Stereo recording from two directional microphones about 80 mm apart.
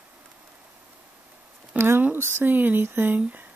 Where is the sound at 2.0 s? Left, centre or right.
Right.